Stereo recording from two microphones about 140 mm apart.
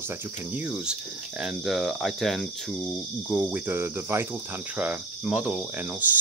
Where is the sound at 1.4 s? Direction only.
5° right (ahead or behind).